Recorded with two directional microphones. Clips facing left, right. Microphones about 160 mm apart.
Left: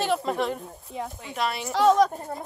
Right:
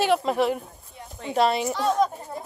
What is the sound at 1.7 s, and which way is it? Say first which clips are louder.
Speech: left 4 dB; 85° left.